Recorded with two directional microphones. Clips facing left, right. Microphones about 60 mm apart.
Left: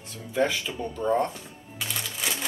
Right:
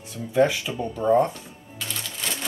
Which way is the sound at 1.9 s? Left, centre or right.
Centre.